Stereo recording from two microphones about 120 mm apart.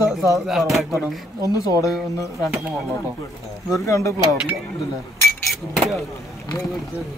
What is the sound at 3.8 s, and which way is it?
Speech, 25° left (ahead or behind).